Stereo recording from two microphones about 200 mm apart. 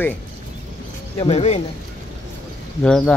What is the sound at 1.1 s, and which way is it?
Speech, 30° left (ahead or behind).